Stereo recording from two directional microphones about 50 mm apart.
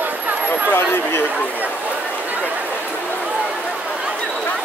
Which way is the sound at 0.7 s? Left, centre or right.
Left.